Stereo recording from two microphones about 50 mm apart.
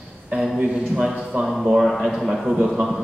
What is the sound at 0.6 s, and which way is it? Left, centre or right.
Speech, centre.